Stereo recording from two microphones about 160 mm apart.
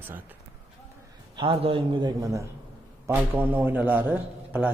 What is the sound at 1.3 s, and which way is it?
Speech, 35° right (ahead or behind).